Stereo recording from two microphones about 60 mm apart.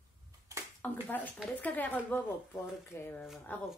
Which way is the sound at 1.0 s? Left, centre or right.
Left.